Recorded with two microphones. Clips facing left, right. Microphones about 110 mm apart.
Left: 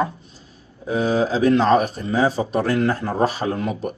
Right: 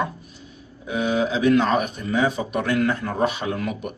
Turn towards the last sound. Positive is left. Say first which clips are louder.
# left 3 dB
turn(degrees=30)  # may be behind; listen again after turning